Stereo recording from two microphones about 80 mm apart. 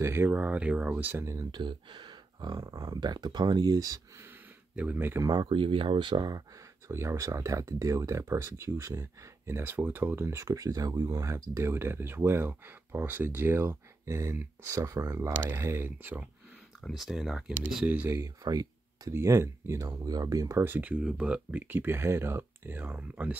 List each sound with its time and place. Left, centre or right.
0.0 s speech: right
1.5 s speech: right
4.7 s speech: right
5.2 s speech: right
6.9 s speech: right
14.7 s speech: right
15.4 s speech: right
16.8 s speech: centre
17.8 s speech: right
18.4 s speech: right
19.1 s speech: right
21.0 s speech: centre
21.5 s speech: right